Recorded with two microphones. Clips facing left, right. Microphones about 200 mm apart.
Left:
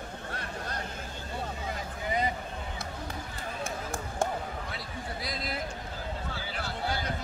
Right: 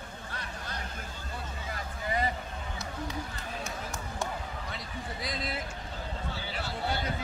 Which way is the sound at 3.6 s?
50° left (ahead or behind).